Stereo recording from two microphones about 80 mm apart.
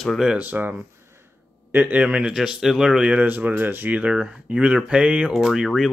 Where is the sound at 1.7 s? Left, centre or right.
Centre.